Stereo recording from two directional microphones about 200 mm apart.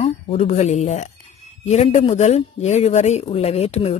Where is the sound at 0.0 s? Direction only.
30° left (ahead or behind).